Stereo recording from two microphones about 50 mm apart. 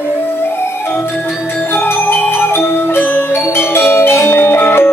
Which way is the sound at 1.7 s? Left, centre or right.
Left.